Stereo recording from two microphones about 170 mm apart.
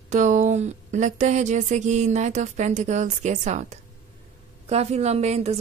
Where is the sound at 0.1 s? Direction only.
45° right (ahead or behind).